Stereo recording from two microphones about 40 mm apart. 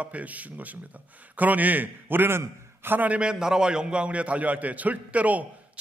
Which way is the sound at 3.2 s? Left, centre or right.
Centre.